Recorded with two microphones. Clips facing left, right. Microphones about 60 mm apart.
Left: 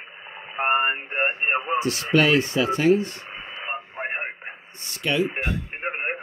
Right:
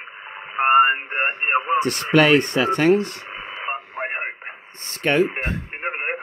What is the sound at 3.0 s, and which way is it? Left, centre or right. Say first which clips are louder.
Speech: right 3 dB; right.